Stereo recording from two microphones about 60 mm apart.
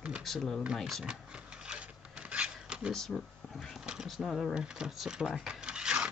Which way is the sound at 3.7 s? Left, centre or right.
Centre.